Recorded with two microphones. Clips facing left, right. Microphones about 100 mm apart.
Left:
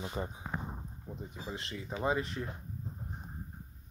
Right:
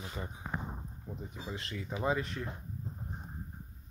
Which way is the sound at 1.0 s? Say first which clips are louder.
Even; centre (ahead or behind).